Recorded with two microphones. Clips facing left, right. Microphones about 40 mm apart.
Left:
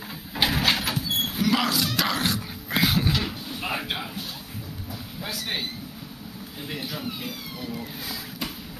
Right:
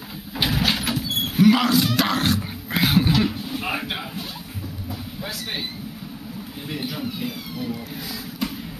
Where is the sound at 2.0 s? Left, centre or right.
Right.